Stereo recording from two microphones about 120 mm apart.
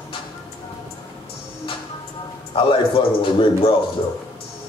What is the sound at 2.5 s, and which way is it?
Speech, 50° left (ahead or behind).